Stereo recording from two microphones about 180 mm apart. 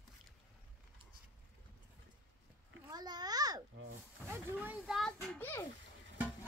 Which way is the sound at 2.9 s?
20° right (ahead or behind).